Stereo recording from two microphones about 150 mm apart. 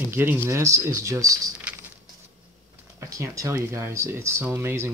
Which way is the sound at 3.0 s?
20° right (ahead or behind).